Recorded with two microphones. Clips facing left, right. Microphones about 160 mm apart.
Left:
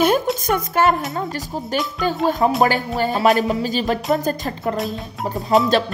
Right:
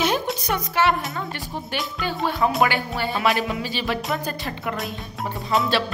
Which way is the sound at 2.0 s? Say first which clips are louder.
Left 4 dB; 40° left (ahead or behind).